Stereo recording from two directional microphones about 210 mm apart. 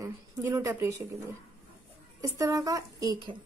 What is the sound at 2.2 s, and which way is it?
A woman's voice, 15° right (ahead or behind).